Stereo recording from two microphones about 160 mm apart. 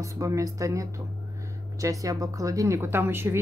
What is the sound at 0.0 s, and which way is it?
A woman's voice, 20° right (ahead or behind).